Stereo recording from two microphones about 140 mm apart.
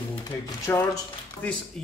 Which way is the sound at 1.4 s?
10° left (ahead or behind).